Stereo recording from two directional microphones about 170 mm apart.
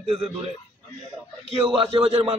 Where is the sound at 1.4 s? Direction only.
30° right (ahead or behind).